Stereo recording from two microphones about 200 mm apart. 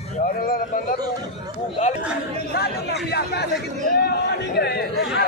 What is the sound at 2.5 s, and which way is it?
Chatter, 55° left (ahead or behind).